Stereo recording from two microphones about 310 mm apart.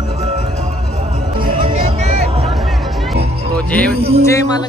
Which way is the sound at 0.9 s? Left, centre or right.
Right.